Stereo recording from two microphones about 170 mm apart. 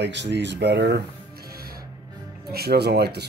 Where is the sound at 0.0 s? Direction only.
90° right.